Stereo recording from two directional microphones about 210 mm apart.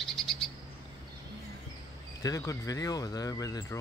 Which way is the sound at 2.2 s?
15° left (ahead or behind).